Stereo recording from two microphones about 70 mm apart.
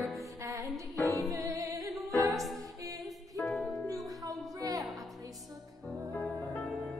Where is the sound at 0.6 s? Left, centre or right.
Centre.